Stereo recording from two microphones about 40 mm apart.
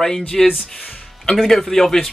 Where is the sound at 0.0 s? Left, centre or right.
Centre.